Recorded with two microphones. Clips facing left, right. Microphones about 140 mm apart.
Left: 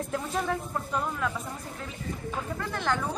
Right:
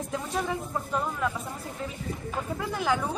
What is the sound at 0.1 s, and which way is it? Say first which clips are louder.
A woman's voice: even; centre (ahead or behind).